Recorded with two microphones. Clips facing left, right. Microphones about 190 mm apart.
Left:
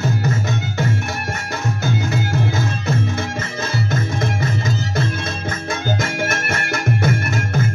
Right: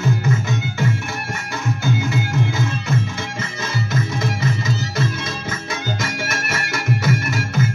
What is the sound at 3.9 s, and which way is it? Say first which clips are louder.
Music: left 1 dB; 50° left (ahead or behind).